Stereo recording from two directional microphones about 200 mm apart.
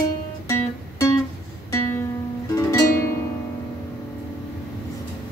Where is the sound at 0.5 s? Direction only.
15° left (ahead or behind).